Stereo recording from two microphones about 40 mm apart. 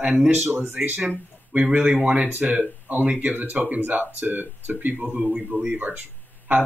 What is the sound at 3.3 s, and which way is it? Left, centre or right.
Speech, right.